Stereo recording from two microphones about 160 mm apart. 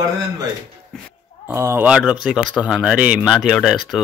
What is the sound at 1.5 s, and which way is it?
Speech, 15° right (ahead or behind).